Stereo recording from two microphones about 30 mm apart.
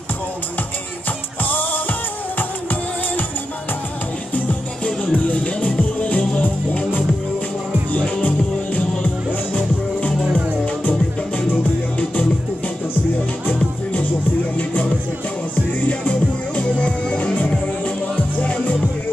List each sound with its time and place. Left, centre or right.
1.4 s music: left
5.1 s music: left
8.2 s music: left
14.6 s music: left
15.9 s music: left